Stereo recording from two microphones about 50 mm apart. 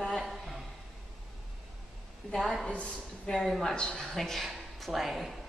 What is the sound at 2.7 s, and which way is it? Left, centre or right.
Speech, left.